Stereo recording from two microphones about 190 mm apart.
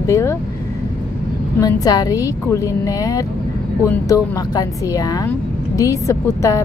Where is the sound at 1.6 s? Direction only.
20° left (ahead or behind).